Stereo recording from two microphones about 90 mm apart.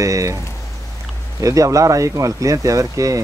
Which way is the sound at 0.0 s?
40° right (ahead or behind).